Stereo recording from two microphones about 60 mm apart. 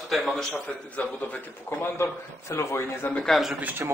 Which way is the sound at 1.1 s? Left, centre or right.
Left.